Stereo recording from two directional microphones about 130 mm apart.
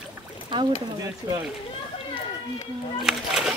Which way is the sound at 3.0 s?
5° right (ahead or behind).